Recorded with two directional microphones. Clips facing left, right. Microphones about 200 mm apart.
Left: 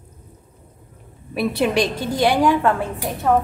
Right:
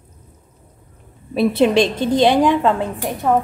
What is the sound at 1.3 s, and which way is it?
A woman's voice, 25° right (ahead or behind).